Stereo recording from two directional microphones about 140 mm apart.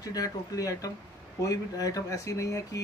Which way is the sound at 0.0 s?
25° left (ahead or behind).